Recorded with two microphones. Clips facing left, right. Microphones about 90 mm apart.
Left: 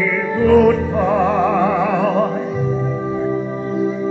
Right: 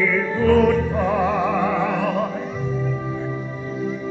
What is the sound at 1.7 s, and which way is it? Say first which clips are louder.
Music: left 5 dB; 20° left (ahead or behind).